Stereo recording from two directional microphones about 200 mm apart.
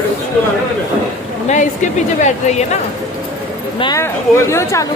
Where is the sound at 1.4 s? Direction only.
35° left (ahead or behind).